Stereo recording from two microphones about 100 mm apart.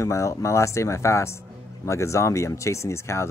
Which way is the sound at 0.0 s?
30° left (ahead or behind).